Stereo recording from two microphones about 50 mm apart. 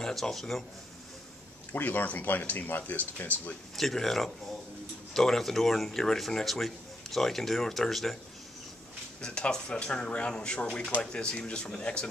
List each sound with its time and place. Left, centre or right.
0.0 s speech: centre
1.7 s speech: left
3.7 s speech: centre
9.2 s speech: centre